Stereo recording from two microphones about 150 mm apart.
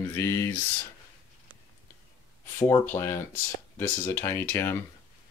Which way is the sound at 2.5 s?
15° left (ahead or behind).